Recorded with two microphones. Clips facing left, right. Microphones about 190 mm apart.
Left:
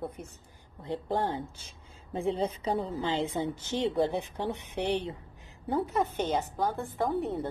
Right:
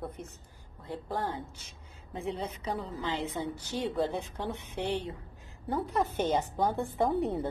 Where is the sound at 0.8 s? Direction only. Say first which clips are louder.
Left 4 dB; 20° left (ahead or behind).